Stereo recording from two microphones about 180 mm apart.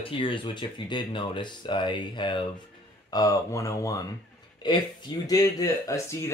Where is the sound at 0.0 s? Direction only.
30° left (ahead or behind).